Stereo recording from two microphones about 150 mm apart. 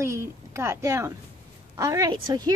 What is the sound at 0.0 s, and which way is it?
A woman's voice, 20° right (ahead or behind).